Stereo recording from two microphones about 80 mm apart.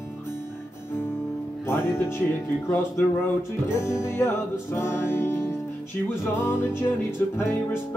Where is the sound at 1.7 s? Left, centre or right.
Left.